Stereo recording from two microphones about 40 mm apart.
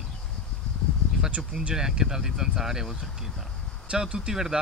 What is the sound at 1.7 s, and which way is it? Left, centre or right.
Speech, centre.